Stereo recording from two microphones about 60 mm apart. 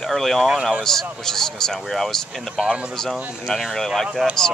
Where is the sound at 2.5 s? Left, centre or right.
Centre.